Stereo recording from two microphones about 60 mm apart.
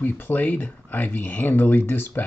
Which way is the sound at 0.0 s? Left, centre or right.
Left.